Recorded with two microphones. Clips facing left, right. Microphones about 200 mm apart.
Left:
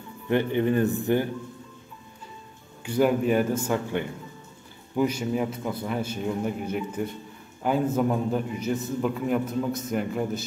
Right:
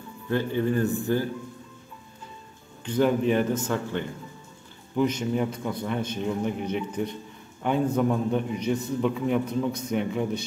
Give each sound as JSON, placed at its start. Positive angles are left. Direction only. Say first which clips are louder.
{"t": 0.3, "sound": "a man's voice", "louder": "left 2 dB", "side_deg": 20}
{"t": 2.8, "sound": "a man's voice", "louder": "even", "side_deg": 10}